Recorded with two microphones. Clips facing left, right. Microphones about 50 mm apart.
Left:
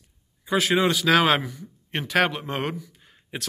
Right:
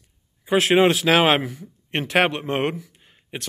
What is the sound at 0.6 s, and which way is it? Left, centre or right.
A man's voice, right.